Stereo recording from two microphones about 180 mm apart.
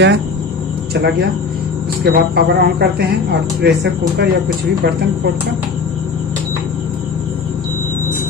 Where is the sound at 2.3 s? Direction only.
60° right (ahead or behind).